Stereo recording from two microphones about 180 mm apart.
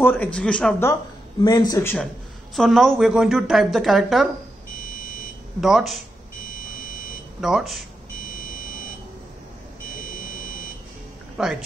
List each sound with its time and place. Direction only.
0.0 s speech: 10° left (ahead or behind)
1.4 s speech: 20° left (ahead or behind)
2.5 s a woman's voice: centre (ahead or behind)
5.6 s a woman's voice: centre (ahead or behind)
7.3 s speech: 5° right (ahead or behind)
9.9 s buzzer: 50° left (ahead or behind)
11.4 s a woman's voice: centre (ahead or behind)